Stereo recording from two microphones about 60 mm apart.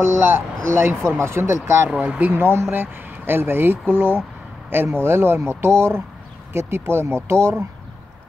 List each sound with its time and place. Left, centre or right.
0.0 s speech: right
0.7 s speech: right
1.9 s speech: right